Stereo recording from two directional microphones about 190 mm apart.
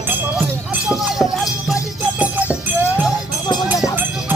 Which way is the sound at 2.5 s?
5° right (ahead or behind).